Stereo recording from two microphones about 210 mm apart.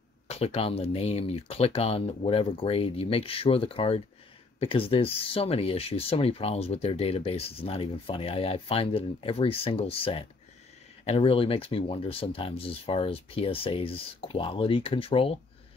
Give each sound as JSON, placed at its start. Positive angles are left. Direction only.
{"t": 0.3, "sound": "speech", "side_deg": 30}